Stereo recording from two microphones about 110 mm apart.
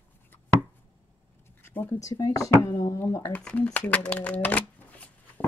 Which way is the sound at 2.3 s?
30° left (ahead or behind).